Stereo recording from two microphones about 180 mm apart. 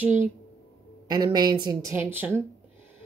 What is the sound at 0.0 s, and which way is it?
Speech, 10° right (ahead or behind).